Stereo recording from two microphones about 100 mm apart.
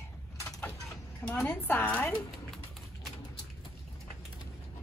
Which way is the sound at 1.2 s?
20° left (ahead or behind).